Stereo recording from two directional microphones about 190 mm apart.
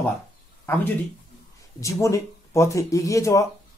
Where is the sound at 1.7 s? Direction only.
15° left (ahead or behind).